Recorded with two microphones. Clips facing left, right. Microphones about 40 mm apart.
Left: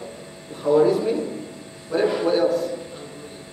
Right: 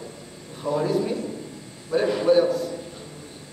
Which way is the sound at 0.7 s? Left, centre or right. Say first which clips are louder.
Left 6 dB; centre.